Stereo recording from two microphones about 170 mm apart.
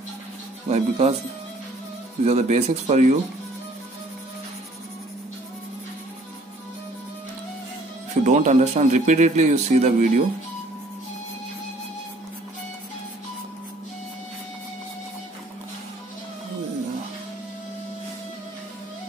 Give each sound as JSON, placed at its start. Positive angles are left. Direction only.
{"t": 0.7, "sound": "speech", "side_deg": -40}
{"t": 2.2, "sound": "speech", "side_deg": -40}
{"t": 8.3, "sound": "speech", "side_deg": -45}